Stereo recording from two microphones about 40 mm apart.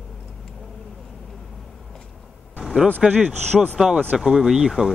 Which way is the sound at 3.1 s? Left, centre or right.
Right.